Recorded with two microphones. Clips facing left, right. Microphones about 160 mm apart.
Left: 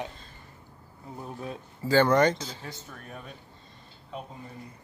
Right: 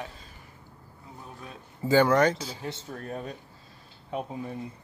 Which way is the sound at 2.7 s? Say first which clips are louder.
Right 7 dB; 30° right (ahead or behind).